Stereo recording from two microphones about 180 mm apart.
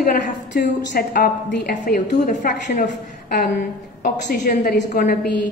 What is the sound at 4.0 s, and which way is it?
A woman's voice, 50° left (ahead or behind).